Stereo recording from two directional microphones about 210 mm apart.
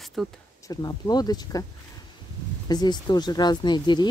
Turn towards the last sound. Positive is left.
turn(degrees=20)  # may be behind; listen again after turning